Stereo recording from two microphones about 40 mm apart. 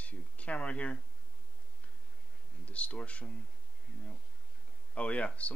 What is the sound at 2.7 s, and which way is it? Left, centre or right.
Speech, left.